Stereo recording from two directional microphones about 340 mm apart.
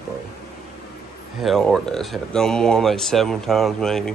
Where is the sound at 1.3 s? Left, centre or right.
Centre.